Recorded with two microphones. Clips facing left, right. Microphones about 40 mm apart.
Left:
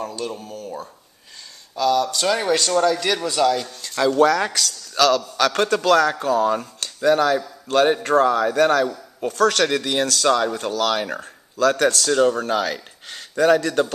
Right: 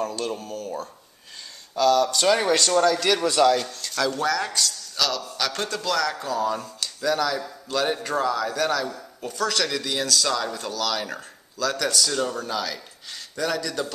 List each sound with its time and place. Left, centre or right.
0.4 s speech: centre
3.8 s speech: left
4.2 s a man's voice: left
4.5 s a man's voice: left
6.0 s speech: left
7.6 s a man's voice: left
9.3 s a man's voice: left
9.7 s a man's voice: left